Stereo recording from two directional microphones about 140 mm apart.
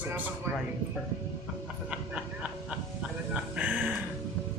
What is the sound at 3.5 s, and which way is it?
Speech, 10° right (ahead or behind).